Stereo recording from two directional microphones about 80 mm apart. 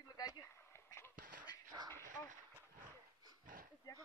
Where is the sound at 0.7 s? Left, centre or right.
Left.